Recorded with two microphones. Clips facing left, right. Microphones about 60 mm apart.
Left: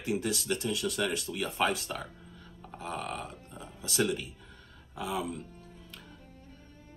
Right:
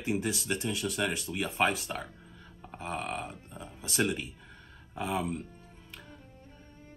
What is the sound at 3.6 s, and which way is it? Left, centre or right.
Speech, right.